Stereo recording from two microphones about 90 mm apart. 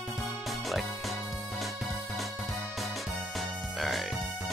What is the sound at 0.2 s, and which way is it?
Music, centre (ahead or behind).